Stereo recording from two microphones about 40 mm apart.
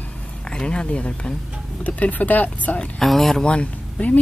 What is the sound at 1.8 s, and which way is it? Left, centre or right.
Speech, left.